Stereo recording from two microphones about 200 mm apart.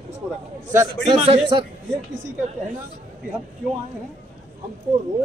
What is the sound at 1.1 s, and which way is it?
Speech, 30° right (ahead or behind).